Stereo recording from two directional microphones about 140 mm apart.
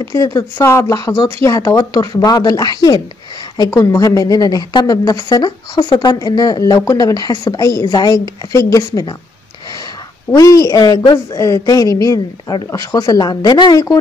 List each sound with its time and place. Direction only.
0.0 s speech: 20° left (ahead or behind)
10.3 s speech: 25° left (ahead or behind)